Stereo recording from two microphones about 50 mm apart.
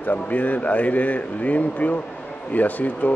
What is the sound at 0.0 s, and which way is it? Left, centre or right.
Speech, left.